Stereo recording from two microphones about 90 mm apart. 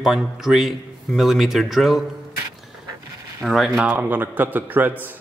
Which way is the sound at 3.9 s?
20° right (ahead or behind).